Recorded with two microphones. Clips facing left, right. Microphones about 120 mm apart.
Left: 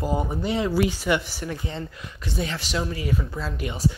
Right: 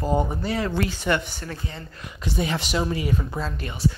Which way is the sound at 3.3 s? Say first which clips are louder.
Even; 10° left (ahead or behind).